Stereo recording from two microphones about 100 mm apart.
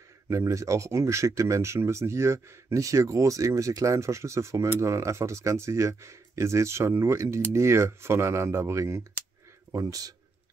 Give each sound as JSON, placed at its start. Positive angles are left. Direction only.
{"t": 0.3, "sound": "speech", "side_deg": -30}